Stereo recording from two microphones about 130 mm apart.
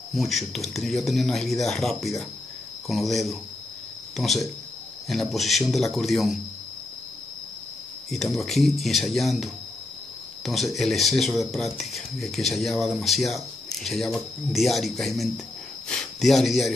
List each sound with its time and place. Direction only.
0.1 s speech: centre (ahead or behind)
8.1 s speech: centre (ahead or behind)